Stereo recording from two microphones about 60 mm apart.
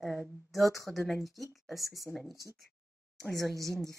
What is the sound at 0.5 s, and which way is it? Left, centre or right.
Speech, centre.